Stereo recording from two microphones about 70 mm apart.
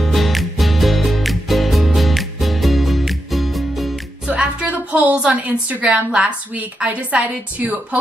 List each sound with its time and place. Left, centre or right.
0.0 s music: centre
4.3 s a woman's voice: centre